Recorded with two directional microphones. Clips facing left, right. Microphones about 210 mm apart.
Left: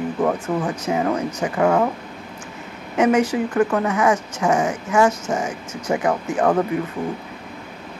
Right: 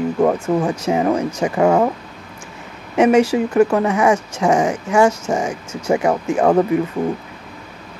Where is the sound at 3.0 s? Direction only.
25° right (ahead or behind).